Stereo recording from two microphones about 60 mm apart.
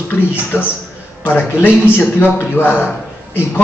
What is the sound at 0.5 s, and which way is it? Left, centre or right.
A man's voice, left.